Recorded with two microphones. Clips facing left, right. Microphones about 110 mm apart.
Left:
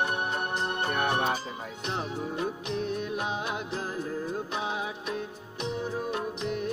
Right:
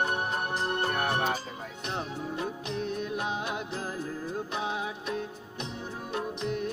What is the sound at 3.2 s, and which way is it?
Music, 5° left (ahead or behind).